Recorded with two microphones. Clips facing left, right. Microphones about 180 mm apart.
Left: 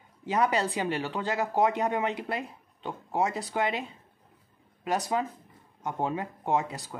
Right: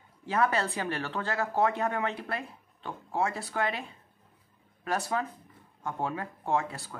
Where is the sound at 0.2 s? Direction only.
15° left (ahead or behind).